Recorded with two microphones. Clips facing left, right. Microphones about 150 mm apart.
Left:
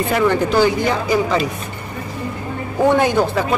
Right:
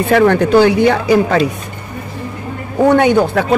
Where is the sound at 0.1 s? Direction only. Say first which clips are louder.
Right 7 dB; 65° right (ahead or behind).